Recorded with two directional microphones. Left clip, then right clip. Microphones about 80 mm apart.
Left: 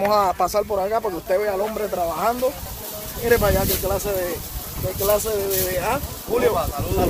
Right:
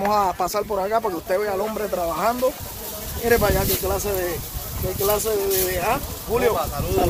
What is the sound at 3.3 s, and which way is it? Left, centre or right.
Speech, right.